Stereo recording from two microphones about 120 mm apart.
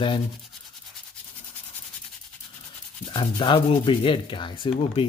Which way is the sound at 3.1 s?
40° left (ahead or behind).